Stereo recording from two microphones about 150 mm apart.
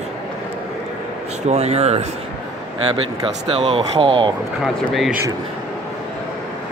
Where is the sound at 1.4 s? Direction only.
45° right (ahead or behind).